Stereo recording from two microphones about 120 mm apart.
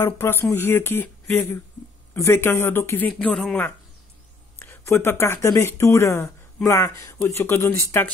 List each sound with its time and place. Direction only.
0.0 s speech: 20° left (ahead or behind)
4.6 s speech: 20° left (ahead or behind)